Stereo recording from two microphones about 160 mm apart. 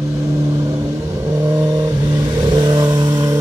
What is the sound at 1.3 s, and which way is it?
Vehicle, 20° right (ahead or behind).